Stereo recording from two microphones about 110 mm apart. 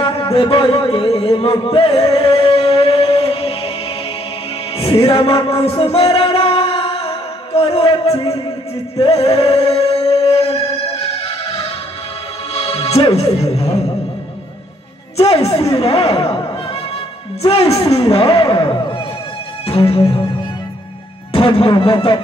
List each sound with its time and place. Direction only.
0.0 s a sound: 50° left (ahead or behind)
4.7 s music: 60° left (ahead or behind)
15.1 s a woman's voice: 60° left (ahead or behind)
17.5 s a man's voice: 60° left (ahead or behind)
19.6 s music: 60° left (ahead or behind)
21.3 s speech: 55° left (ahead or behind)